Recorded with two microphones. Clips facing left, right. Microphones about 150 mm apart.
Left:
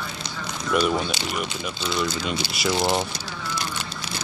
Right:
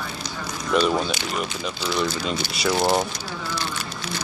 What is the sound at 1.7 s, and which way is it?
Speech, 20° left (ahead or behind).